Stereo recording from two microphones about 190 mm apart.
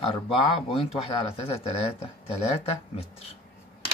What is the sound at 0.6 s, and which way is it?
Speech, 30° left (ahead or behind).